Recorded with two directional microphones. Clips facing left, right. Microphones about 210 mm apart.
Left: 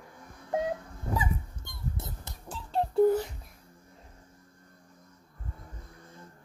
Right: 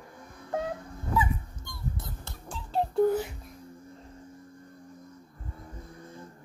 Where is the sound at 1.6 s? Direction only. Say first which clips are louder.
Right 1 dB; 20° left (ahead or behind).